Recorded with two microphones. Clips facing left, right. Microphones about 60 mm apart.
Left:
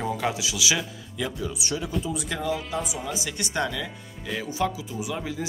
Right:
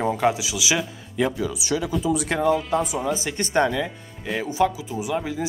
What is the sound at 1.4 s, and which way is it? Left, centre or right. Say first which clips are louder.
Speech: right 5 dB; right.